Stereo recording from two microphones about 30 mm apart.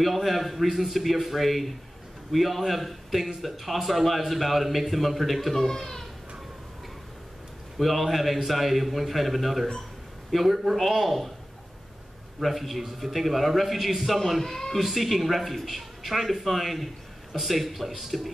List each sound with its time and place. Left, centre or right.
0.0 s speech: centre
5.6 s speech: centre
7.8 s speech: centre
12.4 s speech: centre